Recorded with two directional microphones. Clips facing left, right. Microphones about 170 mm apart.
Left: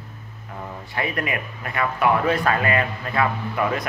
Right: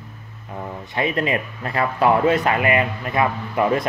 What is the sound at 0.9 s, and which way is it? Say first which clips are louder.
A man's voice: right 5 dB; 25° right (ahead or behind).